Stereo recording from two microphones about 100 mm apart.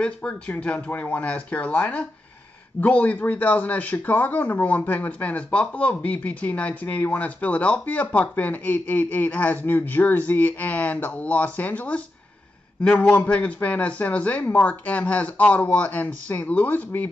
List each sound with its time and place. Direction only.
0.0 s speech: 10° left (ahead or behind)
13.1 s speech: 15° left (ahead or behind)